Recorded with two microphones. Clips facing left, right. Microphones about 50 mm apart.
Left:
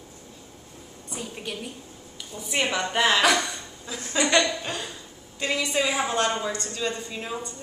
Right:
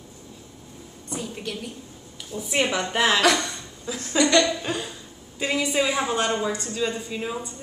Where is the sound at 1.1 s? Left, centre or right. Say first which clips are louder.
Right 3 dB; centre.